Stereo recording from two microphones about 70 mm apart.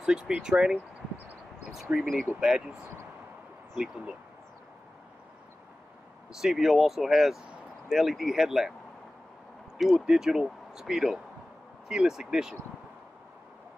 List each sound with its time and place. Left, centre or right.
0.0 s speech: centre
1.9 s speech: right
2.4 s speech: centre
3.7 s speech: centre
6.4 s speech: centre
9.8 s speech: centre